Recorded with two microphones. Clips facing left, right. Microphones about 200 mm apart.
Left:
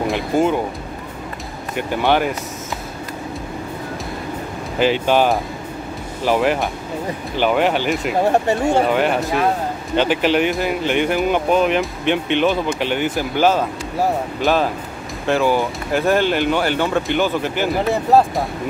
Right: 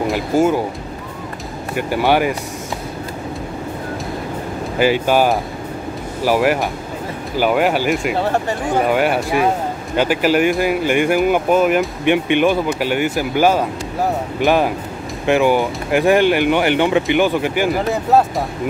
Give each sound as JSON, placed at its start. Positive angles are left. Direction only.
{"t": 0.0, "sound": "speech", "side_deg": -5}
{"t": 1.8, "sound": "speech", "side_deg": -10}
{"t": 4.7, "sound": "speech", "side_deg": -10}
{"t": 8.2, "sound": "speech", "side_deg": 20}
{"t": 8.8, "sound": "speech", "side_deg": -10}
{"t": 17.6, "sound": "speech", "side_deg": 0}